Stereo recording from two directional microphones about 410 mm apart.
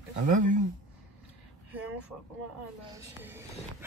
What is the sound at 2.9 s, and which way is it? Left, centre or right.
Speech, centre.